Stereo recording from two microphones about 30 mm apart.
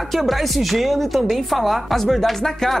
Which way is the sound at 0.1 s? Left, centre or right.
Centre.